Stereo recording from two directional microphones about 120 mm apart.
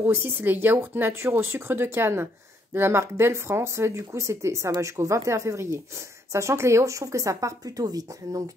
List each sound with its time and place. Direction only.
0.0 s speech: 20° right (ahead or behind)